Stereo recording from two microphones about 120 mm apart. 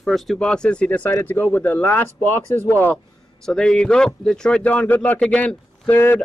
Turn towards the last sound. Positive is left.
turn(degrees=15)  # may be behind; listen again after turning